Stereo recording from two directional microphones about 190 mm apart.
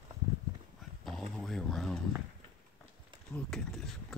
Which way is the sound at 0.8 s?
Centre (ahead or behind).